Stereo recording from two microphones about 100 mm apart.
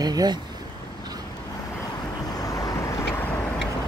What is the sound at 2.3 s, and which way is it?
Vehicle, 35° left (ahead or behind).